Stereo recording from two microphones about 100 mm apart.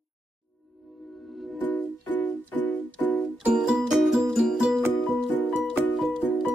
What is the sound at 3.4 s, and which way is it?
Music, 5° right (ahead or behind).